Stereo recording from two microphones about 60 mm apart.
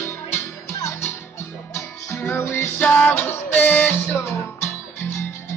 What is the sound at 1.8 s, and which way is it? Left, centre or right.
Music, left.